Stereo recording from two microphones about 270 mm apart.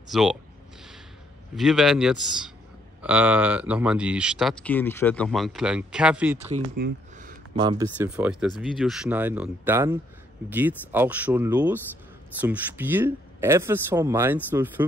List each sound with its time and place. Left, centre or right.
0.1 s speech: centre
1.5 s speech: centre
6.5 s speech: right
7.5 s speech: centre